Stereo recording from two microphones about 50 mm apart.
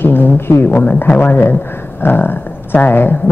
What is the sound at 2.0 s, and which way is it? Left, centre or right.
Speech, left.